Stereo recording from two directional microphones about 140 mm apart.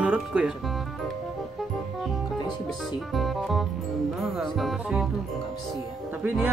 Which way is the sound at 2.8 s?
Centre (ahead or behind).